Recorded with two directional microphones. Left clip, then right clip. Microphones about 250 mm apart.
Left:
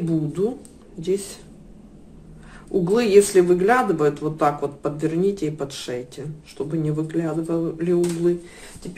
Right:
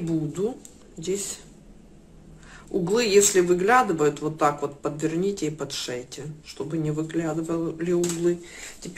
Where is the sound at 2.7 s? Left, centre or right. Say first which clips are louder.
Left 4 dB; centre.